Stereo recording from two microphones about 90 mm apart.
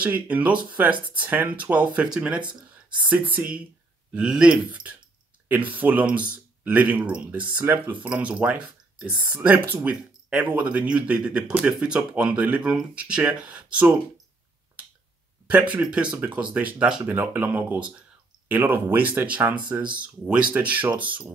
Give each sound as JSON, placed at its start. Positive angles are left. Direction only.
{"t": 0.0, "sound": "speech", "side_deg": -15}
{"t": 15.4, "sound": "speech", "side_deg": -15}